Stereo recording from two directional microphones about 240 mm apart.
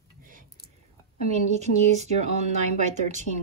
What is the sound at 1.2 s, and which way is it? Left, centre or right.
A woman's voice, right.